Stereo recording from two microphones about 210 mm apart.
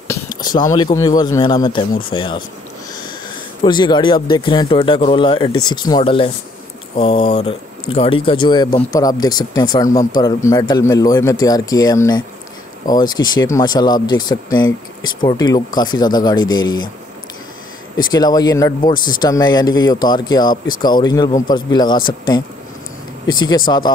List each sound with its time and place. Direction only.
0.6 s speech: 20° left (ahead or behind)
3.6 s a man's voice: 20° left (ahead or behind)
17.9 s speech: 20° left (ahead or behind)
23.2 s speech: 20° left (ahead or behind)